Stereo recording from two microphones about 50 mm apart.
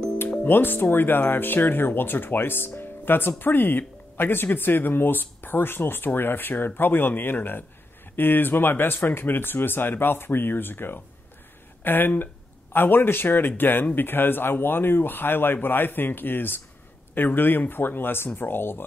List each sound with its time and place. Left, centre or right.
0.4 s speech: left